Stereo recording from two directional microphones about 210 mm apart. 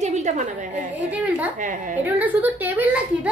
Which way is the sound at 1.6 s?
35° right (ahead or behind).